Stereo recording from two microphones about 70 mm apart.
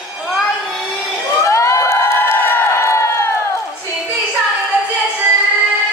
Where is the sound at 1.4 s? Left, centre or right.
Left.